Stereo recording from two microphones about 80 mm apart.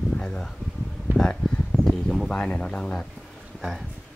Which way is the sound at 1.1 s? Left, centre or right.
Right.